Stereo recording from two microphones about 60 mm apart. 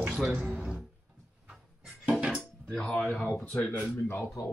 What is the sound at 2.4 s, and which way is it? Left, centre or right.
Music, centre.